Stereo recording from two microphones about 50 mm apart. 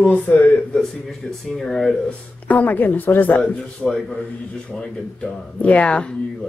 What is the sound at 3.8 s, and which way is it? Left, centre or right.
Speech, centre.